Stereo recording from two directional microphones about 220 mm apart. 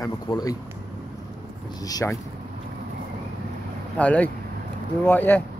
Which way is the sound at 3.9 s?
5° left (ahead or behind).